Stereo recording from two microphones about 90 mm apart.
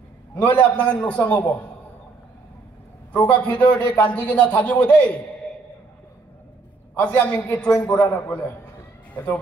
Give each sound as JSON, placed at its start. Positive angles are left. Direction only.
{"t": 0.3, "sound": "a man's voice", "side_deg": 20}
{"t": 3.3, "sound": "a man's voice", "side_deg": 15}
{"t": 7.0, "sound": "a man's voice", "side_deg": 20}